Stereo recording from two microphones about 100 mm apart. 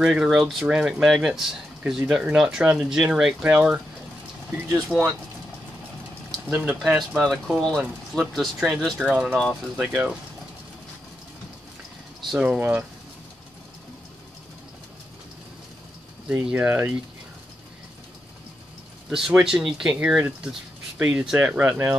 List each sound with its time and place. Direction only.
0.0 s speech: 5° right (ahead or behind)
4.9 s speech: centre (ahead or behind)
6.5 s speech: 10° right (ahead or behind)
9.8 s speech: 10° right (ahead or behind)
12.4 s speech: 15° right (ahead or behind)
16.5 s speech: 15° right (ahead or behind)
19.0 s speech: 5° right (ahead or behind)